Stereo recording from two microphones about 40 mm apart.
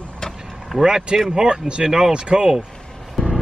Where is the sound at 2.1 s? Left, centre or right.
Right.